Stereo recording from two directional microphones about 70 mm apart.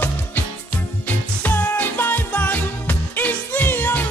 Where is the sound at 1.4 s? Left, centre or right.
Left.